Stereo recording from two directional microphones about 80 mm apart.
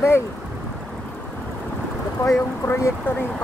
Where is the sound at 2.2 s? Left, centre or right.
Left.